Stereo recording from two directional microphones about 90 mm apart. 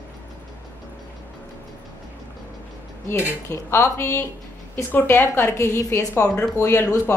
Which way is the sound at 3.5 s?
30° left (ahead or behind).